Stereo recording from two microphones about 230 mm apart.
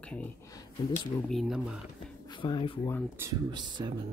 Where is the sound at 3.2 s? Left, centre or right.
Centre.